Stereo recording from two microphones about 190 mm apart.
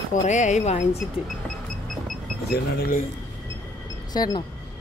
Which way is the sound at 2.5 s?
55° left (ahead or behind).